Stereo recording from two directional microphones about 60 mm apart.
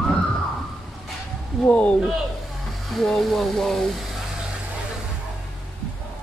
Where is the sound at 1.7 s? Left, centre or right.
Left.